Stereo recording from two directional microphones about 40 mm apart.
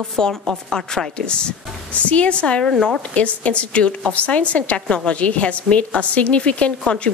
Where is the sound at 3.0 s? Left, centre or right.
Left.